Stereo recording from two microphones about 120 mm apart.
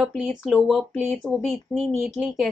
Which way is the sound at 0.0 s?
5° right (ahead or behind).